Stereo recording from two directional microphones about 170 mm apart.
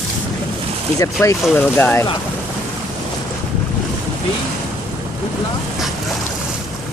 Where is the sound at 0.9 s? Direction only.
15° left (ahead or behind).